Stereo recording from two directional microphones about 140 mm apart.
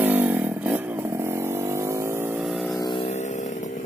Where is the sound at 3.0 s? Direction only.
55° left (ahead or behind).